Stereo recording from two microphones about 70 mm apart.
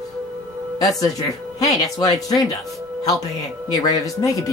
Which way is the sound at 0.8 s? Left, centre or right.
Left.